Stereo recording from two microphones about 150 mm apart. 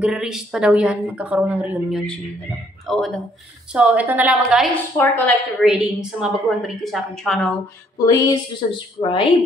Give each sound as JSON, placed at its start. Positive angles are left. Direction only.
{"t": 0.0, "sound": "a woman's voice", "side_deg": -5}
{"t": 3.7, "sound": "speech", "side_deg": -10}
{"t": 4.9, "sound": "a woman's voice", "side_deg": 10}
{"t": 5.6, "sound": "a woman's voice", "side_deg": -5}
{"t": 8.0, "sound": "a woman's voice", "side_deg": 25}